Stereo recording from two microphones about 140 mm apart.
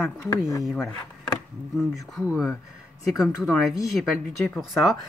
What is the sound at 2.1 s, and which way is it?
Speech, centre (ahead or behind).